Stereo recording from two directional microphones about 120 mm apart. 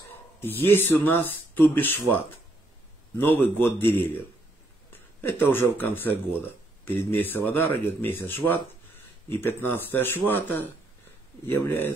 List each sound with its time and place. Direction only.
0.4 s speech: 15° left (ahead or behind)
3.2 s speech: 15° left (ahead or behind)